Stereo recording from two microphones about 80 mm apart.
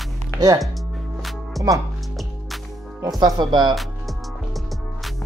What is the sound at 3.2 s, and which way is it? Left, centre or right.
Speech, right.